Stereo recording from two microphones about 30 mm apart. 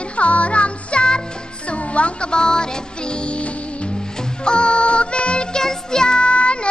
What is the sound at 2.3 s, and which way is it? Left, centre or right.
Music, left.